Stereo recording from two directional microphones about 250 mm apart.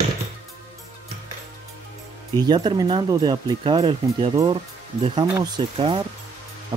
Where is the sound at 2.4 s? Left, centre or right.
Centre.